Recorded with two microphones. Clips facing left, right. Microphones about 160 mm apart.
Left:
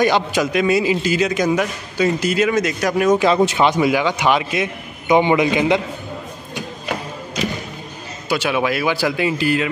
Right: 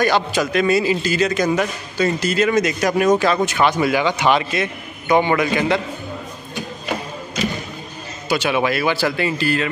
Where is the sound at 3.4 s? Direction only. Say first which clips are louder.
Left 2 dB; 25° left (ahead or behind).